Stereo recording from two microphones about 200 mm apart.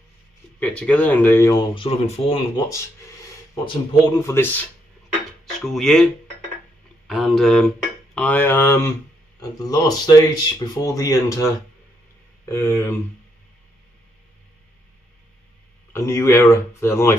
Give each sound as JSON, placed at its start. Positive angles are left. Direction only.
{"t": 0.6, "sound": "speech", "side_deg": 5}
{"t": 4.2, "sound": "speech", "side_deg": 10}
{"t": 5.7, "sound": "speech", "side_deg": 5}
{"t": 7.1, "sound": "speech", "side_deg": 0}
{"t": 12.4, "sound": "speech", "side_deg": 15}
{"t": 15.9, "sound": "speech", "side_deg": 15}